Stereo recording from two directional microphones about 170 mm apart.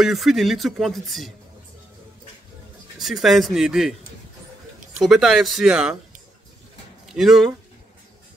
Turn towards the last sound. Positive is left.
turn(degrees=0)  # may be behind; listen again after turning